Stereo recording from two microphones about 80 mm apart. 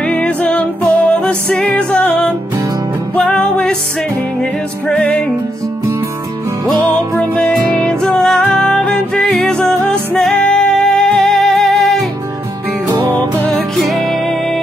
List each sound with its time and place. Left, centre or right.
0.0 s music: centre
7.2 s music: centre
13.7 s music: centre